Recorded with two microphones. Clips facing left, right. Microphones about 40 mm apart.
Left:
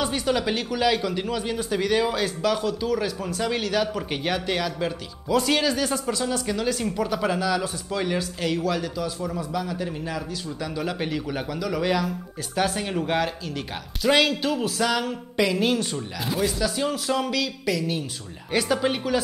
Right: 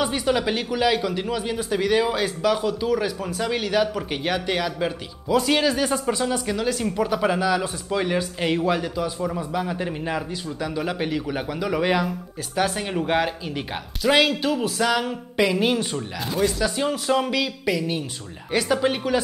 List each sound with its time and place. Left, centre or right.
0.0 s speech: centre
8.5 s a man's voice: right
10.6 s speech: centre
12.5 s speech: centre
16.3 s speech: centre
16.7 s speech: centre
18.5 s speech: centre